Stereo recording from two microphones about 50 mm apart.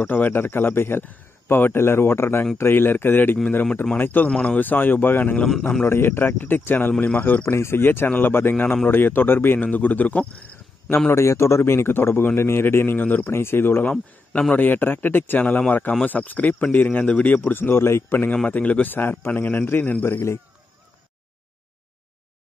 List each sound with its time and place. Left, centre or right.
0.0 s speech: left
5.6 s a man's voice: left
5.9 s speech: left
7.5 s a man's voice: left
7.8 s speech: left
11.1 s a man's voice: left
13.3 s speech: left
17.4 s speech: left
18.1 s speech: left
18.9 s speech: left
20.1 s a man's voice: left